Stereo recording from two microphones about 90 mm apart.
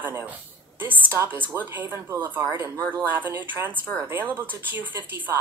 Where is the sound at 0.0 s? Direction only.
20° right (ahead or behind).